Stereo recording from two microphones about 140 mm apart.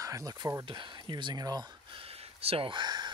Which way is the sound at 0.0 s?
25° right (ahead or behind).